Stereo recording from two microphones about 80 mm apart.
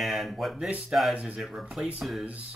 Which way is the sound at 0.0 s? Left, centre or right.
Centre.